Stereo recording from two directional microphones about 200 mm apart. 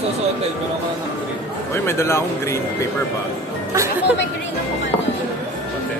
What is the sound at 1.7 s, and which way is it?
Speech, 15° left (ahead or behind).